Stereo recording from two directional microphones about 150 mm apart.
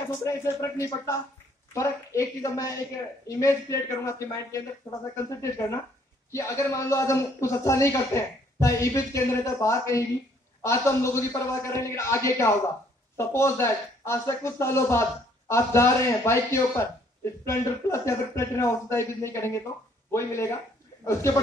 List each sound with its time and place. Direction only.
0.2 s a man's voice: 20° left (ahead or behind)